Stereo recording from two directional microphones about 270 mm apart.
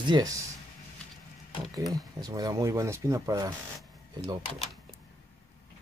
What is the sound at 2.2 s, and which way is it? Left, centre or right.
Speech, centre.